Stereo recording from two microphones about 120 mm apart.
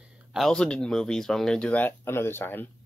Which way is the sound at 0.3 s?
5° left (ahead or behind).